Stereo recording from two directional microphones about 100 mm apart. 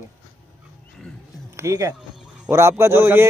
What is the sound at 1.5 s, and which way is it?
A man's voice, 30° right (ahead or behind).